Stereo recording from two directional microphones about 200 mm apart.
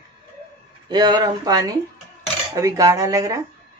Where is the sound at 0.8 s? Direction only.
20° right (ahead or behind).